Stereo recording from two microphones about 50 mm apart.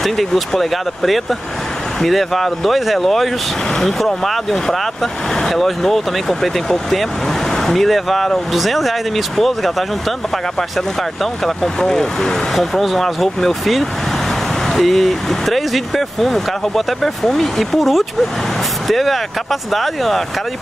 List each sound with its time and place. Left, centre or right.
0.0 s speech: centre
11.4 s speech: centre